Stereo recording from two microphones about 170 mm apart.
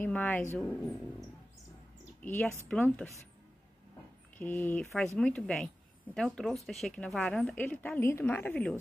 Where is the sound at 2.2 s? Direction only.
10° left (ahead or behind).